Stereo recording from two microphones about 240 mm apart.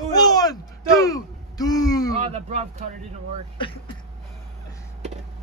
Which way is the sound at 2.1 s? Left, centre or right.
Right.